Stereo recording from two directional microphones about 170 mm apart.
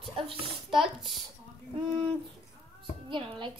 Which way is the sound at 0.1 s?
30° right (ahead or behind).